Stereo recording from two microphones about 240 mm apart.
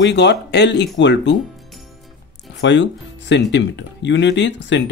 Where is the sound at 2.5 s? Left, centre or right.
Left.